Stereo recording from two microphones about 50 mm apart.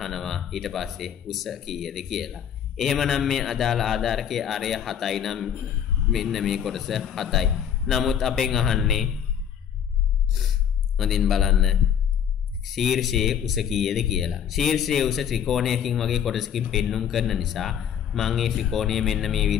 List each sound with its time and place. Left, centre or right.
0.0 s speech: centre
10.3 s a man's voice: centre